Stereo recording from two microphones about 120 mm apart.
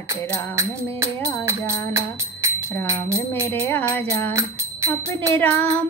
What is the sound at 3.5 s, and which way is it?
Music, 15° left (ahead or behind).